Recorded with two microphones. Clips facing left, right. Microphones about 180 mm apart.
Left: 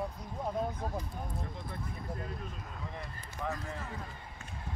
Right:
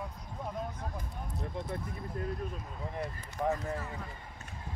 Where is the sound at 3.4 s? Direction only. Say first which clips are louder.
Right 6 dB; 40° right (ahead or behind).